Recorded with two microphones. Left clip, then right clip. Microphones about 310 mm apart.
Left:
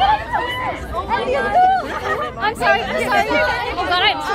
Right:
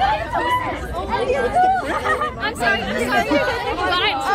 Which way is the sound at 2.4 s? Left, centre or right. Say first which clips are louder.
Left 5 dB; left.